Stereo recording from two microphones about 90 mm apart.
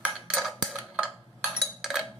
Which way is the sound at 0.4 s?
Centre (ahead or behind).